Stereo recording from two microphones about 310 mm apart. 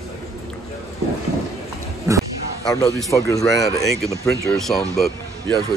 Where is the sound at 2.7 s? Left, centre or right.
Centre.